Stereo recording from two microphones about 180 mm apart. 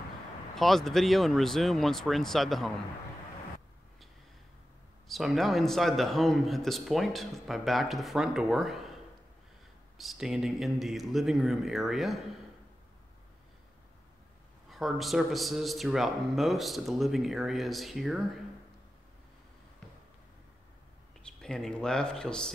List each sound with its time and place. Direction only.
0.6 s a man's voice: centre (ahead or behind)
5.0 s a man's voice: centre (ahead or behind)
9.9 s a man's voice: centre (ahead or behind)
14.7 s a man's voice: centre (ahead or behind)
21.2 s speech: 5° left (ahead or behind)